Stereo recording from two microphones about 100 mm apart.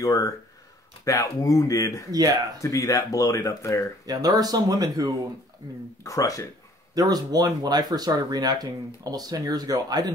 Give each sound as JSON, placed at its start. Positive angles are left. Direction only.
{"t": 0.0, "sound": "speech", "side_deg": 35}
{"t": 2.0, "sound": "speech", "side_deg": -40}
{"t": 2.6, "sound": "speech", "side_deg": 35}
{"t": 4.0, "sound": "speech", "side_deg": -40}
{"t": 6.0, "sound": "speech", "side_deg": 35}
{"t": 7.0, "sound": "speech", "side_deg": -40}